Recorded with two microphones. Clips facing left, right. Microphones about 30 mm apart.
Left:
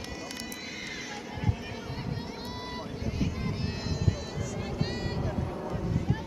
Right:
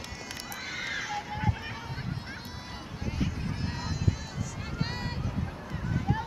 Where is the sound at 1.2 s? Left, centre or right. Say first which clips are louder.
Right 2 dB; centre.